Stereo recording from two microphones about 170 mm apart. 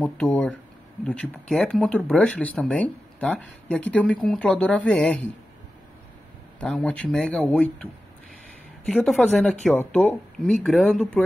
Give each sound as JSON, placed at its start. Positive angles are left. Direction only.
{"t": 0.0, "sound": "speech", "side_deg": 10}
{"t": 6.6, "sound": "speech", "side_deg": 5}
{"t": 8.9, "sound": "speech", "side_deg": 5}